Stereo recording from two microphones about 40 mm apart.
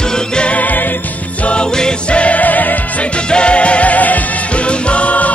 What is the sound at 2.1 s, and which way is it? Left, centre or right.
Music, left.